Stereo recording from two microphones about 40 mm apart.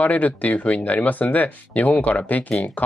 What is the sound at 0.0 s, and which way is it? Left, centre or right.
Speech, left.